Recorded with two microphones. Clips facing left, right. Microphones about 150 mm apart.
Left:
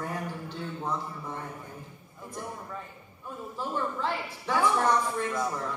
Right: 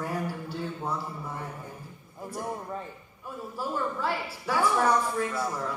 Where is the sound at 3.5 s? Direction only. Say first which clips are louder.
Right 1 dB; 10° right (ahead or behind).